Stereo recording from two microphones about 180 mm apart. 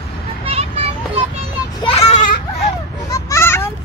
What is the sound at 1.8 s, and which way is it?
Children playing, 35° left (ahead or behind).